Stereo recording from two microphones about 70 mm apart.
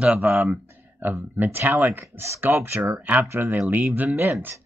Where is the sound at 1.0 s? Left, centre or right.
Right.